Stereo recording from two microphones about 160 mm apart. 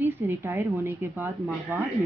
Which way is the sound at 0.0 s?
15° right (ahead or behind).